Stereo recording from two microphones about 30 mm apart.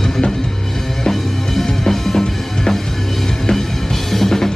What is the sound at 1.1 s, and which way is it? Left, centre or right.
Music, centre.